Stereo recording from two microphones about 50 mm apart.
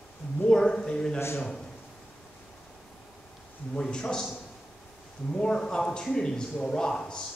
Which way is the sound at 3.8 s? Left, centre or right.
Centre.